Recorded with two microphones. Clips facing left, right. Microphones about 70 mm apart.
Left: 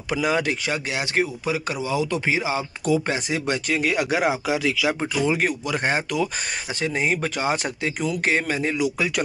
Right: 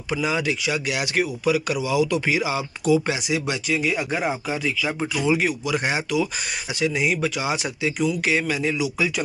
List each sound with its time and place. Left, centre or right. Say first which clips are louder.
0.1 s speech: left 1 dB; left
0.9 s speech: even; left
2.9 s speech: right 2 dB; left
5.2 s speech: right 1 dB; left